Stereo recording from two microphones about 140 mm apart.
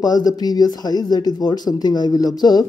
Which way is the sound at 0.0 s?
30° left (ahead or behind).